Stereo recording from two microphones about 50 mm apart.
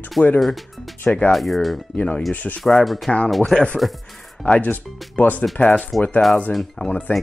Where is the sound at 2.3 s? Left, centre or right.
Left.